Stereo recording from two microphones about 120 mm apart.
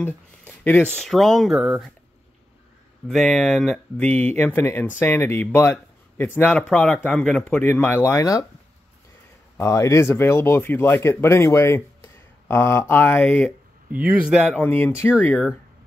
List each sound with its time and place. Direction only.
0.0 s a sound: 15° left (ahead or behind)
0.9 s speech: centre (ahead or behind)
3.1 s speech: centre (ahead or behind); by 8.5 s 30° left (ahead or behind)
9.6 s speech: 25° left (ahead or behind)
13.9 s speech: 10° right (ahead or behind)
14.5 s speech: 15° left (ahead or behind)